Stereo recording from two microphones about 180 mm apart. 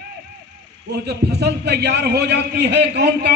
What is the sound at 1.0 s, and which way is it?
A man's voice, 65° right (ahead or behind).